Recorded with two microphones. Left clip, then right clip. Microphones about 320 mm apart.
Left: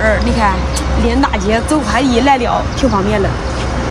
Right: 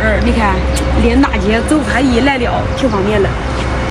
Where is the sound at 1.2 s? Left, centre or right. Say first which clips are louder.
Right 1 dB; left.